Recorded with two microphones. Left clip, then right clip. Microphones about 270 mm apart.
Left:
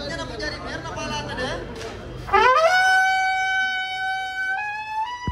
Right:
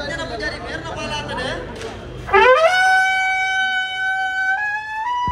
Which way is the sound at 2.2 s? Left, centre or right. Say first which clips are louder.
Right 4 dB; left.